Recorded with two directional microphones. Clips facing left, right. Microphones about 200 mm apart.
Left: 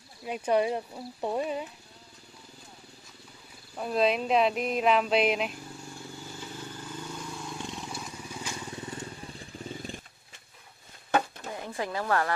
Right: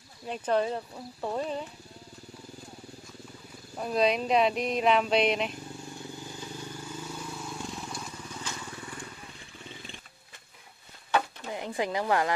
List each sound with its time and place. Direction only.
0.2 s speech: 10° left (ahead or behind)
3.7 s speech: centre (ahead or behind)
6.1 s vehicle: 15° right (ahead or behind); by 10.0 s 45° left (ahead or behind)
11.6 s speech: 15° right (ahead or behind)